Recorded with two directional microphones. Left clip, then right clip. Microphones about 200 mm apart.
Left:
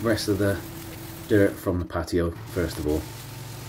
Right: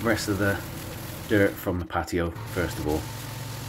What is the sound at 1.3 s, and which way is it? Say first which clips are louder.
Speech: left 2 dB; 10° right (ahead or behind).